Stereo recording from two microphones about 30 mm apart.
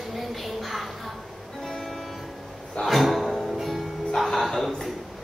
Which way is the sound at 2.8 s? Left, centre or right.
Centre.